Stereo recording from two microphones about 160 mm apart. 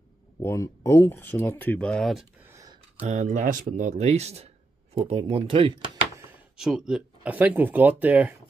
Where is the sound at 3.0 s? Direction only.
50° right (ahead or behind); by 5.8 s 30° right (ahead or behind).